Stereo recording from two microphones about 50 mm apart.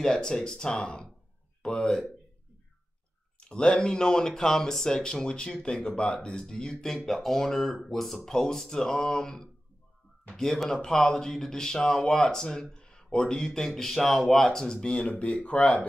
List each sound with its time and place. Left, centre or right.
0.0 s speech: centre
3.3 s speech: centre
10.3 s speech: centre